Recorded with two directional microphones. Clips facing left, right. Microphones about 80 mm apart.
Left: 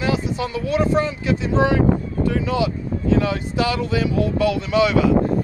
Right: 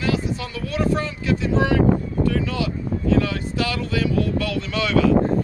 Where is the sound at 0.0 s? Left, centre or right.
Left.